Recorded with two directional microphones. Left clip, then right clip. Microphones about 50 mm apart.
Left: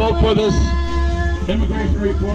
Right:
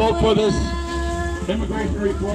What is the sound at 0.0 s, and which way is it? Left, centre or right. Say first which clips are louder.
Music: left 1 dB; centre.